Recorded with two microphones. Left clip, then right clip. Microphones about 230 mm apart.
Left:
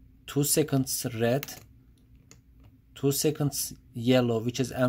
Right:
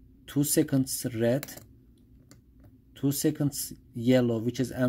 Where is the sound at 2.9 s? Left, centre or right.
Centre.